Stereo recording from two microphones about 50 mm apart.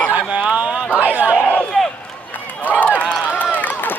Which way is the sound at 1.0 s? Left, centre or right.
Right.